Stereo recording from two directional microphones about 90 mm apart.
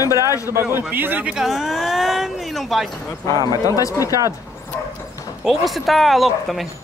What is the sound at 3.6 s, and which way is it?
Speech, 40° left (ahead or behind).